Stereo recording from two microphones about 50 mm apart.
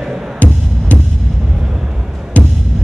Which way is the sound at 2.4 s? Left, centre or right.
Left.